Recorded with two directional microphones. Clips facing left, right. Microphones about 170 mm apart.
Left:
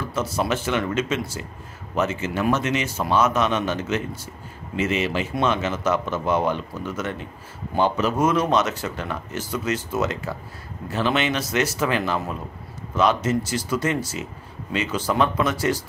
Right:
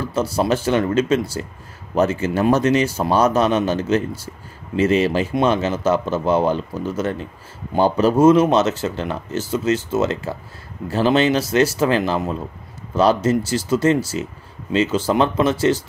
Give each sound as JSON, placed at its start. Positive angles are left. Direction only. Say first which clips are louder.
{"t": 0.0, "sound": "speech", "louder": "right 5 dB", "side_deg": -30}